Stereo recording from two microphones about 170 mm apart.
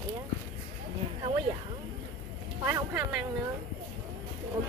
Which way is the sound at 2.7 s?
15° right (ahead or behind).